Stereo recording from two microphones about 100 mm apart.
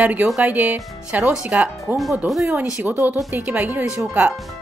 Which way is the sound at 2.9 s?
20° right (ahead or behind).